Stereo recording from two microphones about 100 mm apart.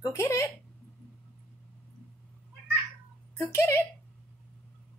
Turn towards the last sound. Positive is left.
turn(degrees=25)  # may be behind; listen again after turning